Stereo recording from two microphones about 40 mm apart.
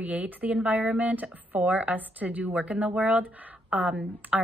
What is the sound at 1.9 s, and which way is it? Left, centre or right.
Speech, right.